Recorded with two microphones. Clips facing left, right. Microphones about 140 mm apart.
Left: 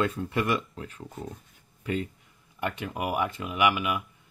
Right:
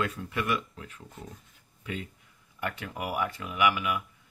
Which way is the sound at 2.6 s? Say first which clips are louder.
Left 4 dB; 20° left (ahead or behind).